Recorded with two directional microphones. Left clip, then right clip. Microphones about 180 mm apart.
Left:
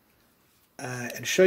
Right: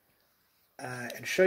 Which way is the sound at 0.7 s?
15° left (ahead or behind).